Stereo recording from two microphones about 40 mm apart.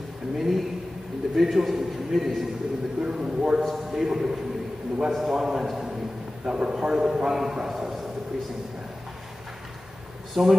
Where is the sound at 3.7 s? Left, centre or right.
Centre.